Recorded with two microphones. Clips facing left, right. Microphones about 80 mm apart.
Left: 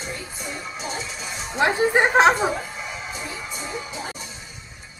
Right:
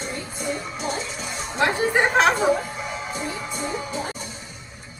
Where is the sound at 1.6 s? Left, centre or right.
Left.